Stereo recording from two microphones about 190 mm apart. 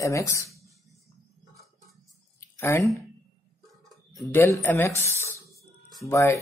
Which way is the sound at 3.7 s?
Centre (ahead or behind).